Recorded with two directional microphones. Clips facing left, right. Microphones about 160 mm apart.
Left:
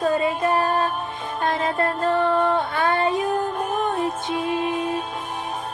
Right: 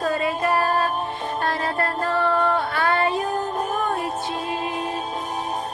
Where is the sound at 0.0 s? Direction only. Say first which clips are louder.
Left 2 dB; 20° left (ahead or behind).